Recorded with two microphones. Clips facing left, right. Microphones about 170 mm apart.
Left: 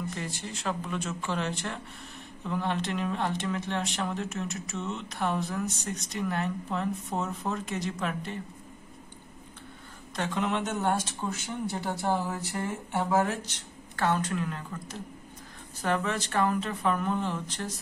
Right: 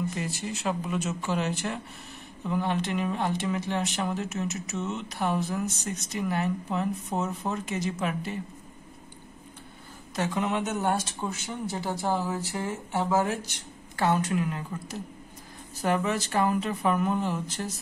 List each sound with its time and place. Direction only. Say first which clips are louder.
0.1 s speech: right 4 dB; 10° right (ahead or behind)
10.1 s speech: right 2 dB; 5° right (ahead or behind)